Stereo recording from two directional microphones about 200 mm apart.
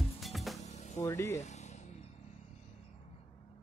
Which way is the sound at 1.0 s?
15° left (ahead or behind).